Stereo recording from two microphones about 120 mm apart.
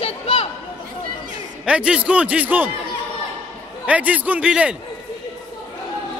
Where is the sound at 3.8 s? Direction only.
10° right (ahead or behind).